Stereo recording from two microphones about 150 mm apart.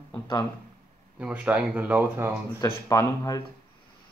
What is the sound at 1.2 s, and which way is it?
Speech, 10° right (ahead or behind).